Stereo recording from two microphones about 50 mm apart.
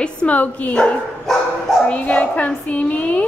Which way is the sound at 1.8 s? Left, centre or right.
Left.